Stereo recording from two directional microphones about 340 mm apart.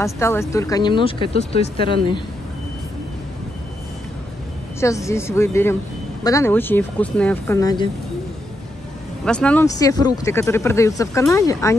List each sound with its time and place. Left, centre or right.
0.0 s speech: centre
4.7 s speech: centre
9.2 s speech: centre